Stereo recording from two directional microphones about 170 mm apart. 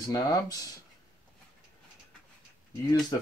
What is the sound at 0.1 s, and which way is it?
Speech, 20° left (ahead or behind).